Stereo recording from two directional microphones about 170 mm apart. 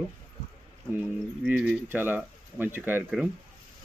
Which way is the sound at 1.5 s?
10° right (ahead or behind).